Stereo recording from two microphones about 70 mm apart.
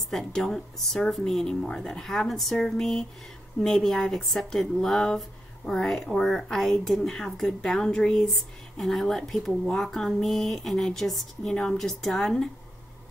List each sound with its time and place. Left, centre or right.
0.1 s speech: centre